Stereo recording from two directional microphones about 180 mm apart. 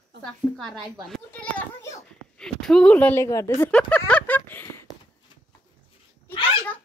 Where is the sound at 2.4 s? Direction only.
5° left (ahead or behind).